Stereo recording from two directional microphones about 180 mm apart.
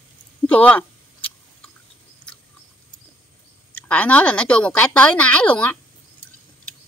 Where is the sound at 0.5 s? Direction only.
10° left (ahead or behind).